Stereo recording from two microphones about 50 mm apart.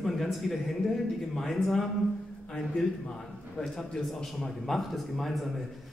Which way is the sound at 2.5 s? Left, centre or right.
Centre.